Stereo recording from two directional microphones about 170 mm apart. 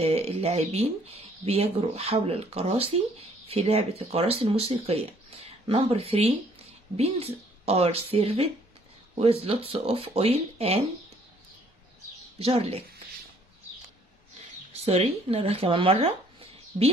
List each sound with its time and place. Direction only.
0.0 s speech: 35° right (ahead or behind)
12.4 s speech: 35° right (ahead or behind)
14.7 s speech: 40° right (ahead or behind)